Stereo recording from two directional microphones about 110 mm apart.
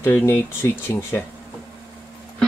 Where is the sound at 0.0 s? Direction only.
20° left (ahead or behind).